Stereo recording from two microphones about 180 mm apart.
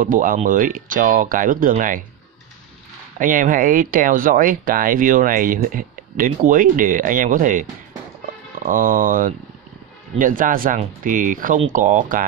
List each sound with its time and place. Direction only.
0.0 s speech: 50° right (ahead or behind)
3.2 s speech: 50° right (ahead or behind)
8.6 s speech: 50° right (ahead or behind)